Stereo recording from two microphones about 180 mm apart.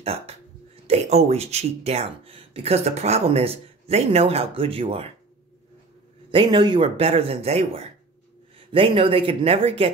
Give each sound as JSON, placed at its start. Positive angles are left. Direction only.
{"t": 0.0, "sound": "speech", "side_deg": -35}
{"t": 6.3, "sound": "speech", "side_deg": -25}